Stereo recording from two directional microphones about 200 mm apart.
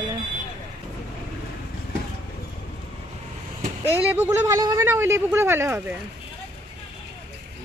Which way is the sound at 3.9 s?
10° right (ahead or behind).